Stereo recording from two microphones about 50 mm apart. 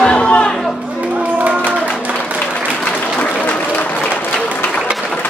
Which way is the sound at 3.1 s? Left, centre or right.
Left.